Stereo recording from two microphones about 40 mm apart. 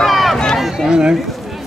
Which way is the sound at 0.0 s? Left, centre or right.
Centre.